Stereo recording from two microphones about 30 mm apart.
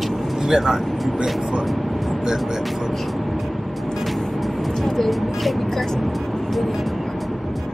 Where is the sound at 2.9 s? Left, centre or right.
Centre.